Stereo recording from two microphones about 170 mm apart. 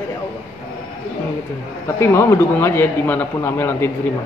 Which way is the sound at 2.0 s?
15° left (ahead or behind).